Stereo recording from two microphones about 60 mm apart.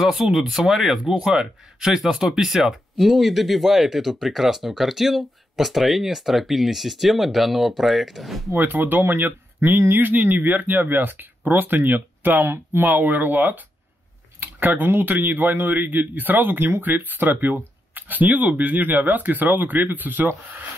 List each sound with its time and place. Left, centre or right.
0.0 s speech: centre
8.5 s a man's voice: right